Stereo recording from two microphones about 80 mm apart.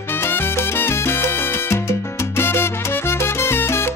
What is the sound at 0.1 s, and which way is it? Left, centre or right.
Salsa music, left.